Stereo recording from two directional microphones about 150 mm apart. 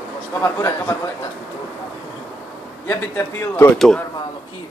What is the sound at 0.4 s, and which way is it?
Speech, 20° left (ahead or behind).